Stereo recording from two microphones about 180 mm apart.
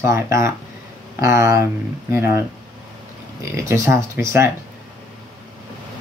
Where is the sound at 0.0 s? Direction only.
15° right (ahead or behind).